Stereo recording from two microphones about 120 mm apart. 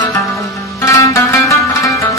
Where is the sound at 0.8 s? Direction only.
25° left (ahead or behind).